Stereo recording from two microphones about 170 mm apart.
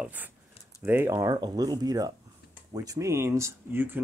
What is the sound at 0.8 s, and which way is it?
Speech, 15° right (ahead or behind).